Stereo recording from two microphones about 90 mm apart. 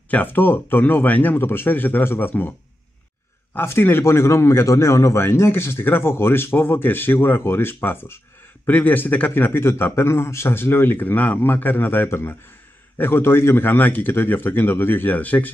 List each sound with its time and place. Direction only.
0.1 s a man's voice: 20° left (ahead or behind)
3.5 s a man's voice: 25° left (ahead or behind)